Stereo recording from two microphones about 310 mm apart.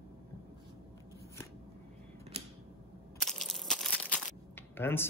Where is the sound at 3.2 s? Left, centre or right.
Centre.